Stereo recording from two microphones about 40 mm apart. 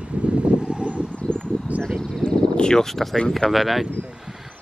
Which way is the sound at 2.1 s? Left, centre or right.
Centre.